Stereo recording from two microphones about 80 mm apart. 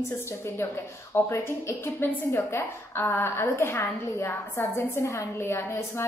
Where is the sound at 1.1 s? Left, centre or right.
Left.